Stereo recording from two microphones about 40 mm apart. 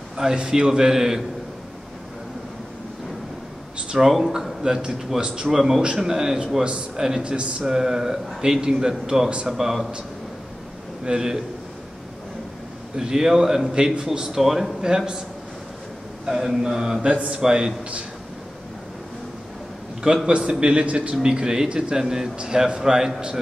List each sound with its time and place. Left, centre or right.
0.2 s speech: centre
4.0 s speech: centre
7.2 s speech: right
7.6 s speech: centre
11.1 s speech: centre
12.9 s speech: centre
13.7 s speech: right
16.3 s speech: centre
20.2 s speech: right
20.9 s a man's voice: right
21.2 s speech: right